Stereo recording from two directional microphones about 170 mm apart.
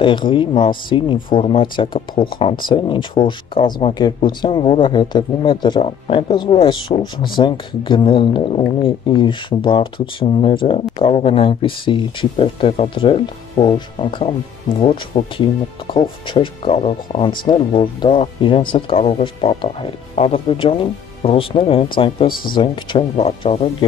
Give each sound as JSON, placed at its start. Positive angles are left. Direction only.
{"t": 0.0, "sound": "speech", "side_deg": 30}
{"t": 22.3, "sound": "speech", "side_deg": 60}
{"t": 22.6, "sound": "speech", "side_deg": 35}